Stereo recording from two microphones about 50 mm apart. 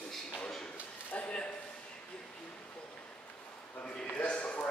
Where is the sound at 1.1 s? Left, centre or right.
Left.